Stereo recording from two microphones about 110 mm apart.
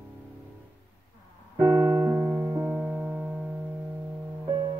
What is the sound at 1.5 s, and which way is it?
Music, 25° right (ahead or behind).